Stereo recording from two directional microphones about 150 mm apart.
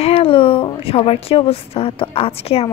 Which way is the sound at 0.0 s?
40° left (ahead or behind).